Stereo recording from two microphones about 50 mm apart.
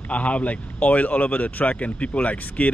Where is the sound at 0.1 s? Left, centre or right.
Left.